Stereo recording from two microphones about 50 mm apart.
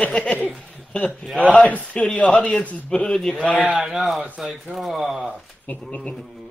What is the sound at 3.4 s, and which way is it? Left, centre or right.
Speech, left.